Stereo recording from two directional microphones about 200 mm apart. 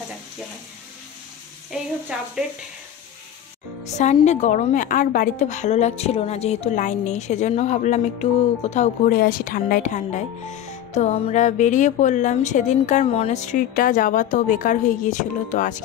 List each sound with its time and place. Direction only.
2.1 s speech: 5° right (ahead or behind)
3.8 s a woman's voice: 35° left (ahead or behind)